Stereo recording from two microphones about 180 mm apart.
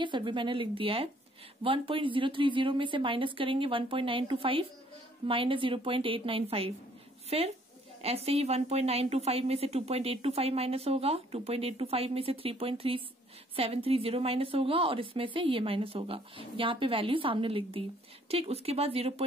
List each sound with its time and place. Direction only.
0.0 s a woman's voice: 25° right (ahead or behind)